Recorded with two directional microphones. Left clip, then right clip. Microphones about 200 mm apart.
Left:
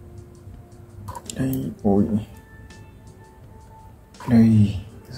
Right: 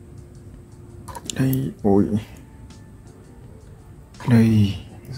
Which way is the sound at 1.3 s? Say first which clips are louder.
Right 3 dB; 25° right (ahead or behind).